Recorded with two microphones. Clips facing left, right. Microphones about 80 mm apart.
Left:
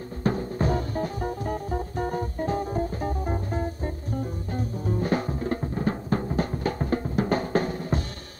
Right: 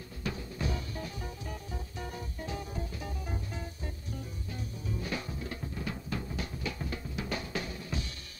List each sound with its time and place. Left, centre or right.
0.2 s music: left